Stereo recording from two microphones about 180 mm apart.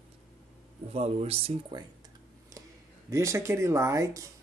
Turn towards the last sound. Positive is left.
turn(degrees=-15)  # may be behind; listen again after turning